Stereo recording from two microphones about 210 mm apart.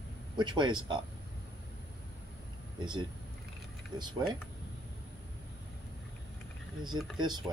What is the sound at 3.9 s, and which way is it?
Speech, 20° right (ahead or behind).